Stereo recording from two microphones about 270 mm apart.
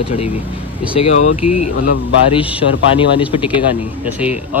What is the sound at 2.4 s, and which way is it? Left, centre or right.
Speech, centre.